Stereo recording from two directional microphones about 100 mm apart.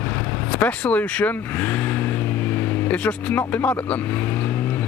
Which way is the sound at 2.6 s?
15° left (ahead or behind).